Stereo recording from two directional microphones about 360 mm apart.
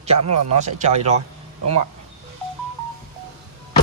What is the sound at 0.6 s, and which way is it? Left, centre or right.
Speech, centre.